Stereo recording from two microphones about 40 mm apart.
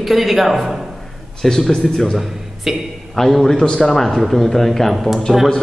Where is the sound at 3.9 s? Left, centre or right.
Centre.